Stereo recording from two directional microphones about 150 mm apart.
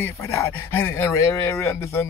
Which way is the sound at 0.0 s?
20° left (ahead or behind).